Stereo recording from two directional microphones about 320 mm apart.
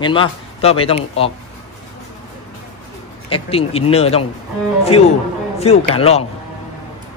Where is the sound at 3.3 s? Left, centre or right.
Centre.